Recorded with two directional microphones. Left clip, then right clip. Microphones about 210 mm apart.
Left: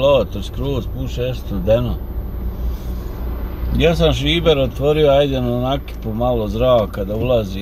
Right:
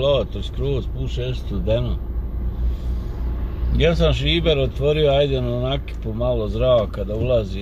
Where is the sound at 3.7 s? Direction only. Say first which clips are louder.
Left 3 dB; 15° left (ahead or behind).